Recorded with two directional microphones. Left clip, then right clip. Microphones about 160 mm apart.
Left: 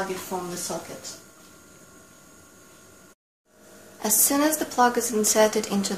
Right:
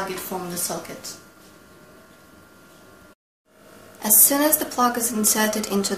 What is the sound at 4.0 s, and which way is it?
A woman's voice, 55° left (ahead or behind).